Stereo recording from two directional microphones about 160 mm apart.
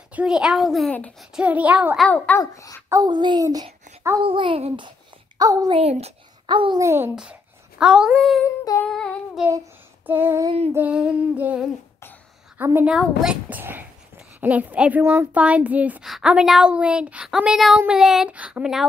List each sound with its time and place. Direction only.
0.1 s child singing: 5° right (ahead or behind)
1.3 s a woman's voice: 10° right (ahead or behind)
2.0 s a child's voice: 10° left (ahead or behind)
2.9 s a child's voice: 25° right (ahead or behind)
4.2 s a child's voice: 35° right (ahead or behind)
5.4 s a woman's voice: 25° right (ahead or behind)
5.8 s a child's voice: 40° right (ahead or behind)
6.8 s a woman's voice: 15° right (ahead or behind)
7.8 s child singing: 5° right (ahead or behind)
10.0 s a woman's voice: 15° right (ahead or behind)
17.7 s child singing: 5° right (ahead or behind)